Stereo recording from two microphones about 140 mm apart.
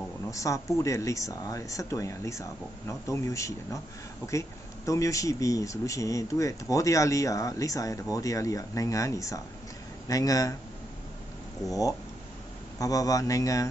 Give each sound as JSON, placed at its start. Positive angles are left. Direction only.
{"t": 0.3, "sound": "speech", "side_deg": 25}
{"t": 12.7, "sound": "speech", "side_deg": 25}